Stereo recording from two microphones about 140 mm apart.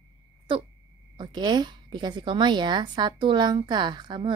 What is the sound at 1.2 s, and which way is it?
A woman's voice, 30° right (ahead or behind).